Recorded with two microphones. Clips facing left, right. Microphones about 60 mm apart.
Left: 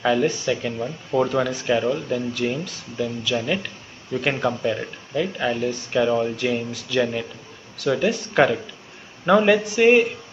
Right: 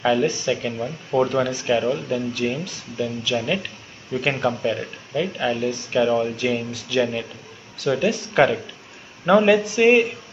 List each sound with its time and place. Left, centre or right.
0.0 s speech: centre